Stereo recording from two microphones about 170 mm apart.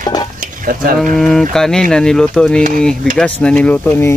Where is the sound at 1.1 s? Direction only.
Centre (ahead or behind).